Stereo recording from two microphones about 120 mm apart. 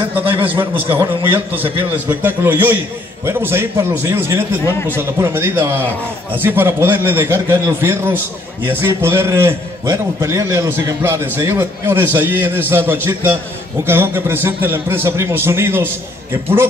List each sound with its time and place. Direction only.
0.4 s a man's voice: 15° right (ahead or behind)
1.6 s a man's voice: 50° right (ahead or behind)
2.2 s a man's voice: 15° right (ahead or behind)